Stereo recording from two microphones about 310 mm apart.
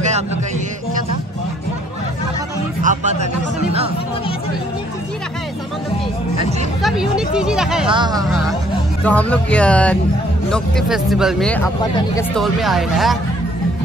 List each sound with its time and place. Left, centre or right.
2.8 s music: right
6.8 s a sound: centre
7.9 s speech: centre
9.0 s speech: centre